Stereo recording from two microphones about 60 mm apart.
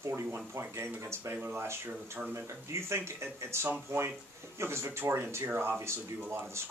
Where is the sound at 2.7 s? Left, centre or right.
Right.